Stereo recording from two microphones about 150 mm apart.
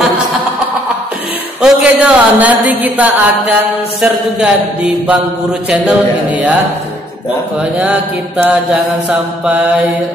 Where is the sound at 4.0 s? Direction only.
5° right (ahead or behind).